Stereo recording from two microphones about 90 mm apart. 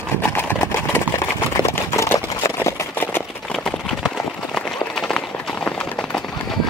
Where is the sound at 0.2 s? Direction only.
25° left (ahead or behind).